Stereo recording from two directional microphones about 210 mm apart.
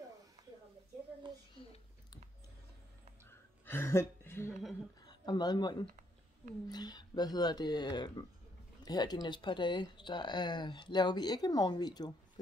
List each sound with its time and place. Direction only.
1.6 s speech: 25° left (ahead or behind)
3.3 s a sound: 10° left (ahead or behind)
5.0 s speech: 20° left (ahead or behind)